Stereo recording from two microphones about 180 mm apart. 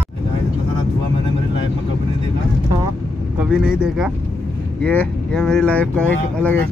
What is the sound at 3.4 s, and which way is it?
Vehicle, 5° right (ahead or behind).